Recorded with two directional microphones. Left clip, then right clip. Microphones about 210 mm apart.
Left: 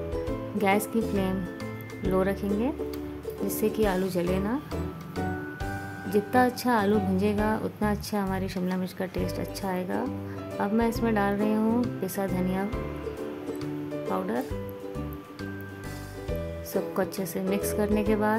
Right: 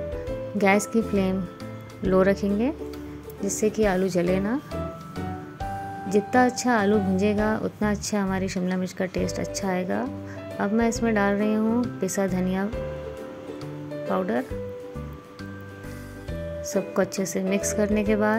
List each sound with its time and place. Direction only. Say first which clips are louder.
0.6 s speech: right 4 dB; 15° right (ahead or behind)
6.0 s speech: right 3 dB; 10° right (ahead or behind)
14.0 s speech: right 5 dB; 15° right (ahead or behind)
16.7 s speech: right 4 dB; 15° right (ahead or behind)